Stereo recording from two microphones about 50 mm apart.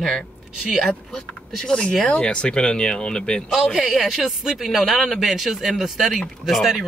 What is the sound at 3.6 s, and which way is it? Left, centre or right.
Speech, centre.